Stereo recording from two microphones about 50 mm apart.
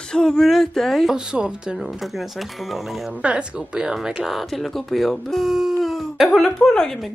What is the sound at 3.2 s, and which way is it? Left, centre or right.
Speech, right.